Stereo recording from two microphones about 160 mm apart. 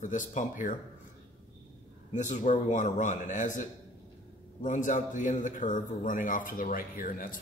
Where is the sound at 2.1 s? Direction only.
50° left (ahead or behind).